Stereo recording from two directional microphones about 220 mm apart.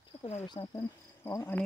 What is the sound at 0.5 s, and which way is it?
Cricket, 10° left (ahead or behind).